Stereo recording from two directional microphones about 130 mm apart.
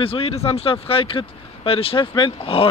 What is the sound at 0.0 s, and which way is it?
Speech, 45° left (ahead or behind).